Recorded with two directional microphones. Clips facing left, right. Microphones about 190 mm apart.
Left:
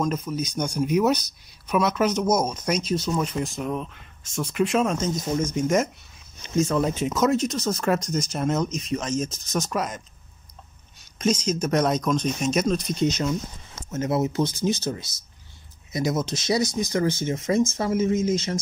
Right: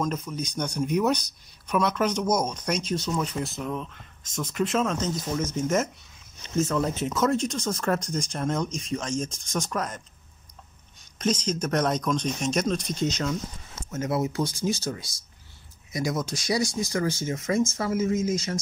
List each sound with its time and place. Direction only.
0.1 s speech: 10° left (ahead or behind)
11.1 s speech: 10° left (ahead or behind)
13.8 s speech: 20° left (ahead or behind)